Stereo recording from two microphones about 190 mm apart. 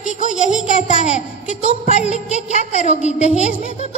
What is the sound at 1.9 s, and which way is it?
Music, 35° left (ahead or behind).